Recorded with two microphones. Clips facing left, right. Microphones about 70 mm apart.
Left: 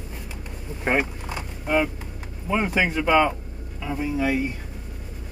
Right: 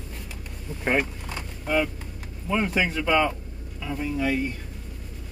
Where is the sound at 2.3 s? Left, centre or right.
Centre.